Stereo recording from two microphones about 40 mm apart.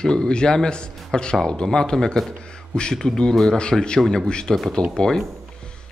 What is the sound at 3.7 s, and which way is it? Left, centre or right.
Speech, centre.